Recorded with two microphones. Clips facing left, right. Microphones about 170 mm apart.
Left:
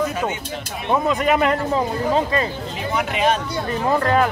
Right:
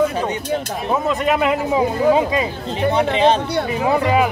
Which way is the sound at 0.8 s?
Centre (ahead or behind).